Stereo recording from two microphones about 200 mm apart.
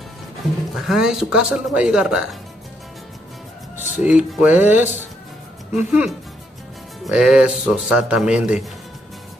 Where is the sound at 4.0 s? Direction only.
5° right (ahead or behind).